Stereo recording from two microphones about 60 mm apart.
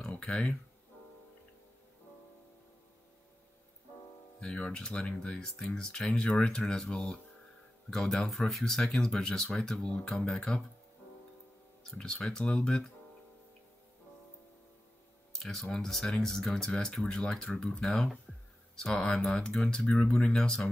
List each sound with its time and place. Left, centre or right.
0.0 s a sound: centre
4.4 s speech: centre
11.8 s speech: centre
15.3 s speech: centre